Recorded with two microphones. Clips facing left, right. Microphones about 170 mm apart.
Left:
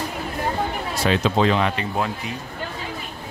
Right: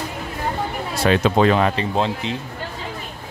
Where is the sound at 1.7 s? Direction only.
25° right (ahead or behind).